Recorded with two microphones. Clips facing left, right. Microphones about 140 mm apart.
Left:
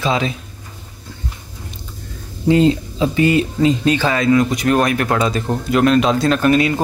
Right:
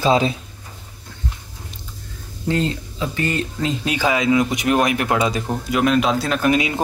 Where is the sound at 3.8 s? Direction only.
10° right (ahead or behind).